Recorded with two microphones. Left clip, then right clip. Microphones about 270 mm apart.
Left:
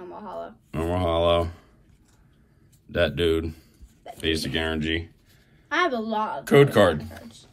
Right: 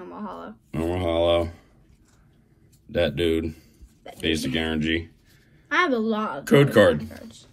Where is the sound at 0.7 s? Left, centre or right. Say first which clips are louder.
Even; centre.